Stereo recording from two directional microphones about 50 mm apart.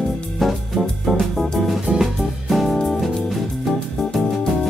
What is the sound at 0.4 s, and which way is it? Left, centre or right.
Music, centre.